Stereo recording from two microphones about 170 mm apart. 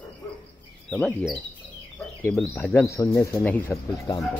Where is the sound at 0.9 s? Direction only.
10° left (ahead or behind).